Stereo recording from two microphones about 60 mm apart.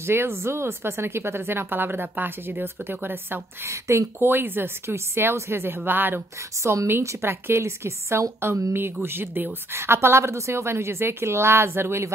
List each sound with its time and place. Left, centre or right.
0.0 s speech: right
3.6 s speech: right
4.2 s speech: right
6.6 s a woman's voice: right